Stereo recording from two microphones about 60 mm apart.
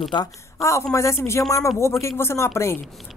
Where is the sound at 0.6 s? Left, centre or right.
Left.